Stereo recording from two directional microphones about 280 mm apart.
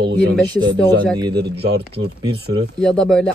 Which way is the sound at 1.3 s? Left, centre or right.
Right.